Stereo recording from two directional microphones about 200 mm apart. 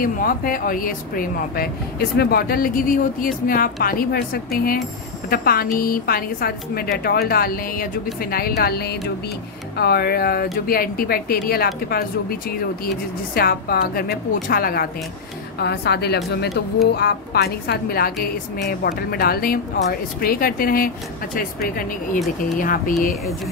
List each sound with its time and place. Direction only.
0.0 s a woman's voice: 45° left (ahead or behind)